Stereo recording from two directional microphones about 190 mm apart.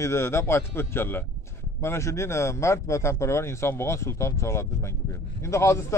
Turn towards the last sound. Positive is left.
turn(degrees=15)  # may be behind; listen again after turning